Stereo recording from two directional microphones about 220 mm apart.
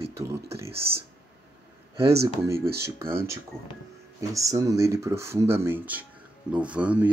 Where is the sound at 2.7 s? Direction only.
45° right (ahead or behind).